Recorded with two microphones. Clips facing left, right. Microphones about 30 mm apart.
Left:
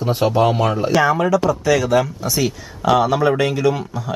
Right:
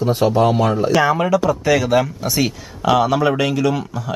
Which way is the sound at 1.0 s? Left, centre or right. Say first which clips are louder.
Even; centre.